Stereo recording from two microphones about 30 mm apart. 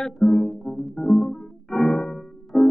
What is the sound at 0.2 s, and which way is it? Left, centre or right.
Music, centre.